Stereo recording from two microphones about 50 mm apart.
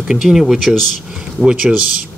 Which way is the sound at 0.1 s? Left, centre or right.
Centre.